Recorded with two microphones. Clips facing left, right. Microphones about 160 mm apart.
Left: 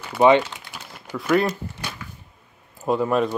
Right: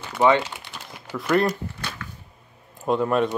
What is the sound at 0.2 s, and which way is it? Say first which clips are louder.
Speech: left 3 dB; 15° left (ahead or behind).